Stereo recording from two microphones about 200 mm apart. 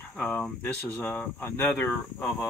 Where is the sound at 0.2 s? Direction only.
5° left (ahead or behind).